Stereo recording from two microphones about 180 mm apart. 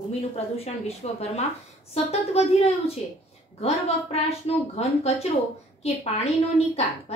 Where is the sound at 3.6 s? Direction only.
35° left (ahead or behind).